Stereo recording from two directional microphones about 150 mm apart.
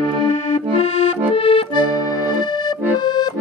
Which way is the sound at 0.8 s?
45° left (ahead or behind).